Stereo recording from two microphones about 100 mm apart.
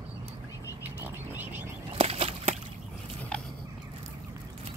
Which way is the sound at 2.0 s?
75° right (ahead or behind).